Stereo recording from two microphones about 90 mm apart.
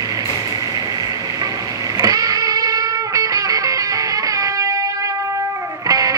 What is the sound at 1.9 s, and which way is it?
Music, 40° right (ahead or behind).